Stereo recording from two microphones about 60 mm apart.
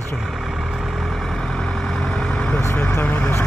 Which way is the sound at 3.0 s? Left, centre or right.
Left.